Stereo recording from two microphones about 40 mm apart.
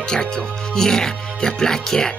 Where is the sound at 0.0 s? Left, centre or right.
Centre.